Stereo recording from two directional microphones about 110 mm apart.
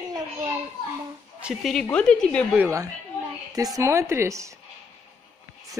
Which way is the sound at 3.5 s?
30° right (ahead or behind).